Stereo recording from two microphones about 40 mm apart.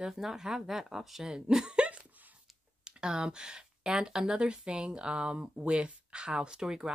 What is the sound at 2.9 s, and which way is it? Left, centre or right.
Speech, right.